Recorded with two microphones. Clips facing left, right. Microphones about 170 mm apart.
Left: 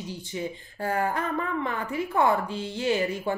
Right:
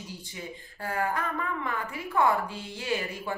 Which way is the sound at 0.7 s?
25° left (ahead or behind).